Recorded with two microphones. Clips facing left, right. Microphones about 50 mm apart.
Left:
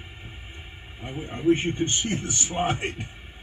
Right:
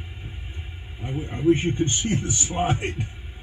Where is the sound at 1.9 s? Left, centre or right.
Left.